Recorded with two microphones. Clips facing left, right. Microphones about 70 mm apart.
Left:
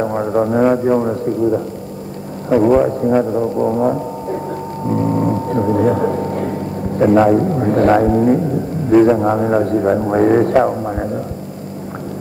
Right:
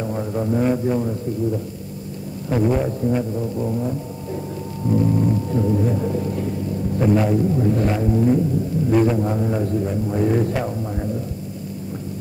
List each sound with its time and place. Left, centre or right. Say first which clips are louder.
0.0 s speech: left 8 dB; left
2.5 s music: left 8 dB; left
4.8 s speech: left 3 dB; left